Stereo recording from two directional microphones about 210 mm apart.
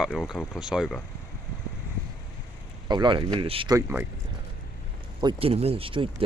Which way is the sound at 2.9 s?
20° right (ahead or behind).